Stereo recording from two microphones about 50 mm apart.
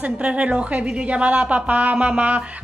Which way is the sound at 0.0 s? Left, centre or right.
Right.